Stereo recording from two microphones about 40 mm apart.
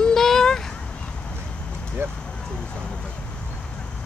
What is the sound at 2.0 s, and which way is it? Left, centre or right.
Speech, right.